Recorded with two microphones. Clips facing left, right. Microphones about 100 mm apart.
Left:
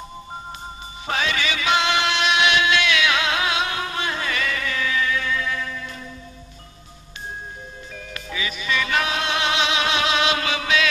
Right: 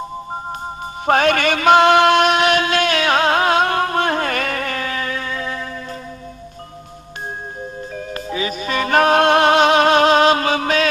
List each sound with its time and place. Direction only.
1.0 s music: 55° right (ahead or behind); by 5.7 s 35° right (ahead or behind)
7.9 s music: 40° right (ahead or behind)